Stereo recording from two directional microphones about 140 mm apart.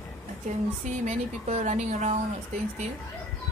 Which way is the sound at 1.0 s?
55° right (ahead or behind).